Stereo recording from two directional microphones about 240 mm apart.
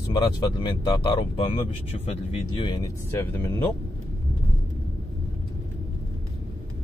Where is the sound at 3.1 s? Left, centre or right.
Centre.